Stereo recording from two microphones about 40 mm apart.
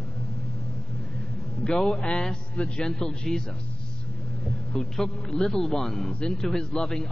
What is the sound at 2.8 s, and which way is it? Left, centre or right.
Speech, centre.